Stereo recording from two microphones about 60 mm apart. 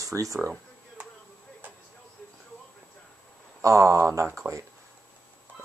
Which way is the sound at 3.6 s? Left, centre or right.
Right.